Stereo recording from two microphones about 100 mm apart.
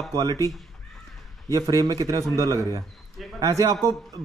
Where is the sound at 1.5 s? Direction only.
35° right (ahead or behind).